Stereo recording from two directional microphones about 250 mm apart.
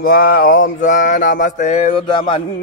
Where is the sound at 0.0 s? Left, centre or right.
Left.